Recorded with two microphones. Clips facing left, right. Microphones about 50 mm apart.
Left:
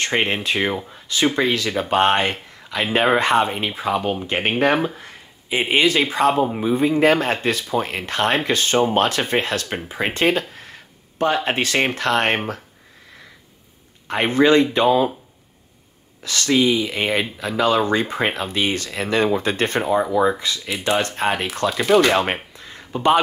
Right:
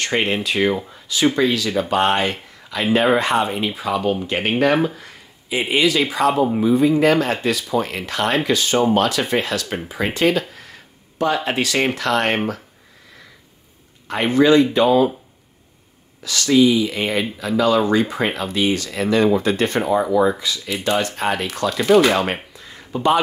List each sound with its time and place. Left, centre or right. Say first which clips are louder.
0.0 s speech: even; left
1.0 s speech: right 2 dB; left
14.0 s speech: right 1 dB; left
16.2 s speech: right 3 dB; left
21.8 s speech: right 2 dB; centre
22.1 s speech: left 1 dB; left
22.9 s speech: even; left